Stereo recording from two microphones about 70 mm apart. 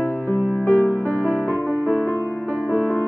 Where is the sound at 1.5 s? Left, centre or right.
Right.